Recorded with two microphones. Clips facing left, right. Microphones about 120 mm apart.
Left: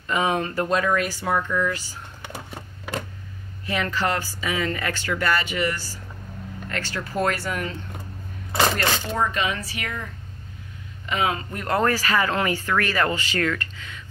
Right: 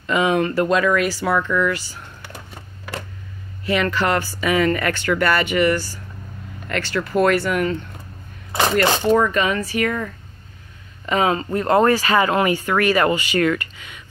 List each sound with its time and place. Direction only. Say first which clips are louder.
0.0 s speech: right 5 dB; 90° right
3.6 s speech: right 5 dB; 80° right; by 5.9 s 65° right (ahead or behind)
6.7 s speech: right 8 dB; 80° right
9.0 s speech: right 9 dB; 70° right (ahead or behind)
9.4 s speech: right 7 dB; 50° right (ahead or behind)
11.1 s speech: right 6 dB; 40° right (ahead or behind); by 14.0 s 15° right (ahead or behind)